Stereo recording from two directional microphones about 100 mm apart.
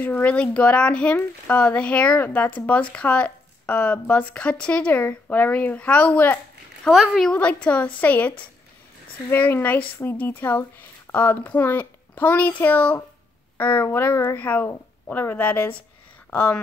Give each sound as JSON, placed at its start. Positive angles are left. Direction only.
{"t": 0.0, "sound": "speech", "side_deg": 15}
{"t": 6.9, "sound": "a woman's voice", "side_deg": -5}
{"t": 7.2, "sound": "speech", "side_deg": 15}